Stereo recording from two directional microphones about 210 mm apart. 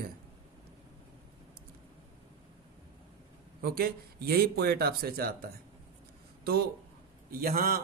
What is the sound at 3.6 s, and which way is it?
Speech, 45° right (ahead or behind).